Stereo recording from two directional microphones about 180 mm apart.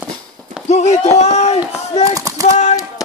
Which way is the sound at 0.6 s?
40° left (ahead or behind).